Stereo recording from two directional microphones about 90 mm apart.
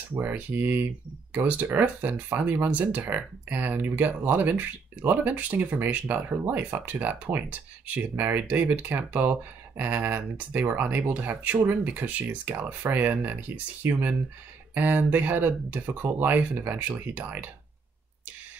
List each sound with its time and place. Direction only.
0.1 s speech: 20° right (ahead or behind)